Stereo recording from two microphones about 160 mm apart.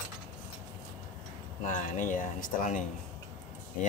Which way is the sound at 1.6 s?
50° left (ahead or behind).